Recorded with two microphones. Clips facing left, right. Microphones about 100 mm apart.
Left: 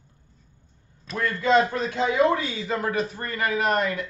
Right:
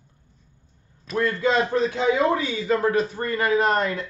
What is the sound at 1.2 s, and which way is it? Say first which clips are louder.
A man's voice: even; 30° right (ahead or behind).